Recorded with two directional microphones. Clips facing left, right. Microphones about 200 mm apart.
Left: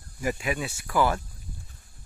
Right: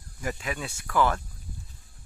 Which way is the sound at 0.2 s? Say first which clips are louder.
Left 4 dB; 10° left (ahead or behind).